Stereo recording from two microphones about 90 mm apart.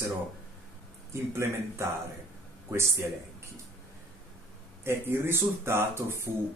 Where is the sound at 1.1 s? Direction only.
30° right (ahead or behind).